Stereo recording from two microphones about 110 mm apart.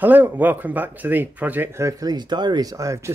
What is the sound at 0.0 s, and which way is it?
Speech, 15° right (ahead or behind).